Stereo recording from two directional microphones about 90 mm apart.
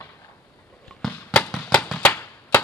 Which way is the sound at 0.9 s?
10° left (ahead or behind).